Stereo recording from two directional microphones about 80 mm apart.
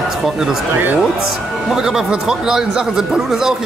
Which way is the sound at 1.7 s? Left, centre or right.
Centre.